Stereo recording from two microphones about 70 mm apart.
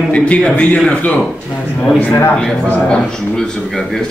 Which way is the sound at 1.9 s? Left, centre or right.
Left.